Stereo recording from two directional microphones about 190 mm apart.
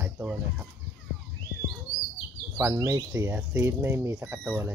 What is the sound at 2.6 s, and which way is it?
Speech, 15° right (ahead or behind).